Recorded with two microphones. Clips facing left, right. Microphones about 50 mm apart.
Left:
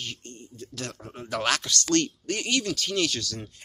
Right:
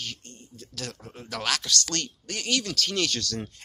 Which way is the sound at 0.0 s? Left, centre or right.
Left.